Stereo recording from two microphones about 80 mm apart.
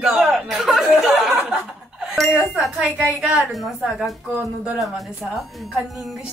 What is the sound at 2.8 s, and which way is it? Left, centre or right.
Speech, centre.